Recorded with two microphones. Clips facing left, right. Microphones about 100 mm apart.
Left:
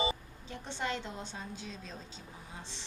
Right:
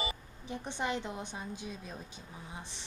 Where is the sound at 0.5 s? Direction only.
15° right (ahead or behind).